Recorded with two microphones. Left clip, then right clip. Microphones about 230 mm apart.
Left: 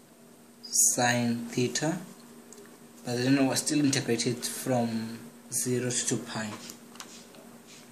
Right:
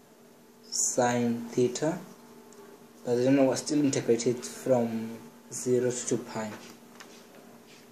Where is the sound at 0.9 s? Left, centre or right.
Left.